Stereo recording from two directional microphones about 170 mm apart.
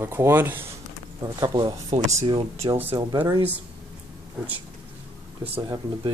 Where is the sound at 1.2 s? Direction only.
25° right (ahead or behind).